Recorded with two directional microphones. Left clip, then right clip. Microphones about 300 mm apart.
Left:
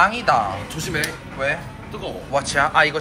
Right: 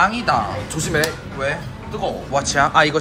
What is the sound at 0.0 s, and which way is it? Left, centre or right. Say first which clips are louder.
Speech: even; centre.